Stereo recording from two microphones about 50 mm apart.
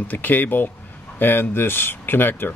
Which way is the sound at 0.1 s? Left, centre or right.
Left.